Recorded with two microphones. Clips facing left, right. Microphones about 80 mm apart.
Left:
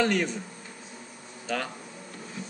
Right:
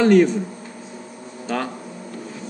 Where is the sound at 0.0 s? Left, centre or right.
Centre.